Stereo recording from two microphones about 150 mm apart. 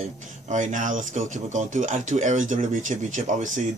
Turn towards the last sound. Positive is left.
turn(degrees=-55)  # may be behind; listen again after turning